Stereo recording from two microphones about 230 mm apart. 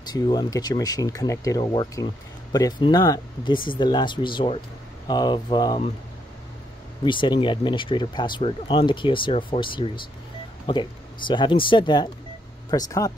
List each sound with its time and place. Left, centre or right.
0.1 s speech: centre
7.1 s speech: left